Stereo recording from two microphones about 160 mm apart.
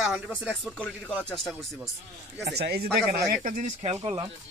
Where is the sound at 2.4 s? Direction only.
90° right; by 3.3 s 75° right (ahead or behind).